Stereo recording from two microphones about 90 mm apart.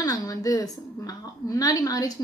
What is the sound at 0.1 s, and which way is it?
A woman's voice, 40° left (ahead or behind).